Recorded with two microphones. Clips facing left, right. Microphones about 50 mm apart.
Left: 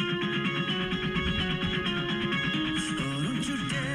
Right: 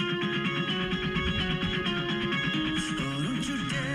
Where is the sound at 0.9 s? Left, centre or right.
Centre.